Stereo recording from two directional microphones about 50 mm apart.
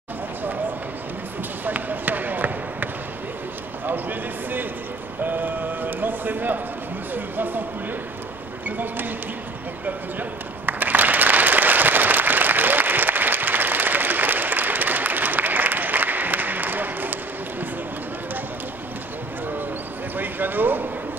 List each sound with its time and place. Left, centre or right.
1.6 s basketball bounce: right
3.8 s a man's voice: right
8.6 s speech: right
10.6 s applause: right
20.2 s basketball bounce: right